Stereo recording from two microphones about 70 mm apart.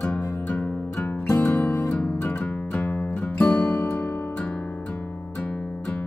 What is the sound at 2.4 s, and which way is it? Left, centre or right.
Music, centre.